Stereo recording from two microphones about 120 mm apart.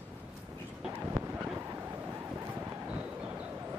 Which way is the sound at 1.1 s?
25° right (ahead or behind).